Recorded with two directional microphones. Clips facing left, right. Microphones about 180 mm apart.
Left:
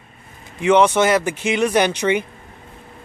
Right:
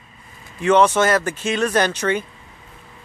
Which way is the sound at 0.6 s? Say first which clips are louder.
Left 1 dB; 15° left (ahead or behind).